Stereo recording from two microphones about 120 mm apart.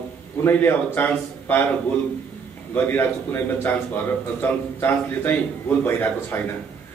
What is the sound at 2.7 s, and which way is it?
A man's voice, 15° left (ahead or behind).